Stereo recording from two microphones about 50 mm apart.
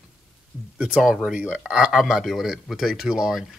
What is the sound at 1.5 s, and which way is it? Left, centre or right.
Speech, centre.